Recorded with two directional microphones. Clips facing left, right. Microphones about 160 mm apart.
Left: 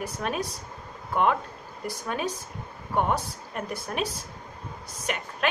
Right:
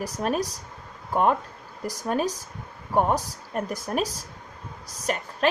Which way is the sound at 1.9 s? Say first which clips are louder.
Right 4 dB; 40° right (ahead or behind).